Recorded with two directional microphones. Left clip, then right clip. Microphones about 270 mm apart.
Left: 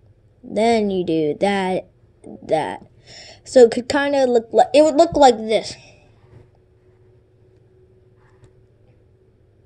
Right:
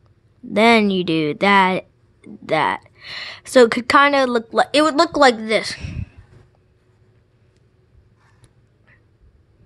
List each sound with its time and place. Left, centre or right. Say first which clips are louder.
0.5 s speech: right 3 dB; right